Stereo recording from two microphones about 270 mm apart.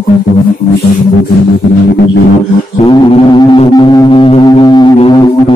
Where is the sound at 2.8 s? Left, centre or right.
Left.